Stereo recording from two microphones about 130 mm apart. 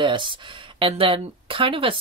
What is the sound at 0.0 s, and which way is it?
Speech, 40° right (ahead or behind).